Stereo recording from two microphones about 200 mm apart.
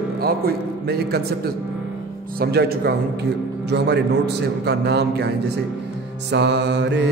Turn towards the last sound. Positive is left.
turn(degrees=-60)  # may be behind; listen again after turning